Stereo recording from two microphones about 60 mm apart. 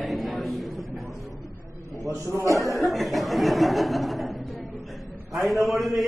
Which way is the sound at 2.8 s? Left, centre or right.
Centre.